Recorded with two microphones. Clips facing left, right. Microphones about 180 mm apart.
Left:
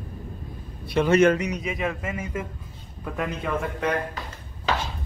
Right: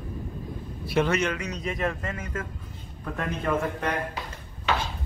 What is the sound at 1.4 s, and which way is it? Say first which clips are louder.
A man's voice: left 2 dB; 10° left (ahead or behind).